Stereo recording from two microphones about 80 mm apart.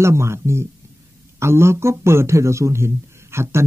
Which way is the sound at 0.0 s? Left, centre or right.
Right.